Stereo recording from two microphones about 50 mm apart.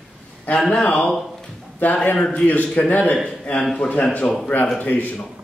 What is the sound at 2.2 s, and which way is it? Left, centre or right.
Speech, centre.